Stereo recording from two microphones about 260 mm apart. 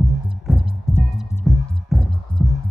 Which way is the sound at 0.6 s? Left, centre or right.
Right.